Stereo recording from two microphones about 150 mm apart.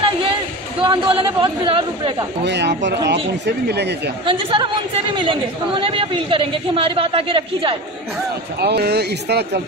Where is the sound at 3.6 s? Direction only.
90° right.